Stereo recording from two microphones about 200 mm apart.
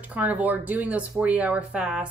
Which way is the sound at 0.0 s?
5° right (ahead or behind).